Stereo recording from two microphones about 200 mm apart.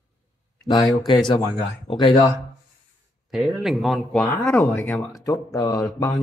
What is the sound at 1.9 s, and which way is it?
Speech, 25° left (ahead or behind).